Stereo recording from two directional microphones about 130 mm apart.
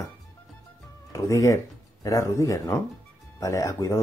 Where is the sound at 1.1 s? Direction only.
25° left (ahead or behind).